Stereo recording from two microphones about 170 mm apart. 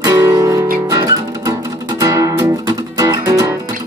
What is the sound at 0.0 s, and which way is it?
Music, 20° right (ahead or behind).